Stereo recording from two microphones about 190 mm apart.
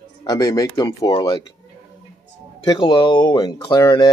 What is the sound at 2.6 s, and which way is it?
Speech, 25° left (ahead or behind).